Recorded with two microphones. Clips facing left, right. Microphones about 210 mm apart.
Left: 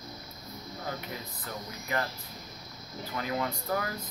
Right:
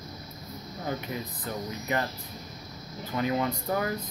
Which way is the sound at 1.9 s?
20° right (ahead or behind).